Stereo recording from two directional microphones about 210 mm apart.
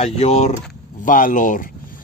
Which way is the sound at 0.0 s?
30° left (ahead or behind).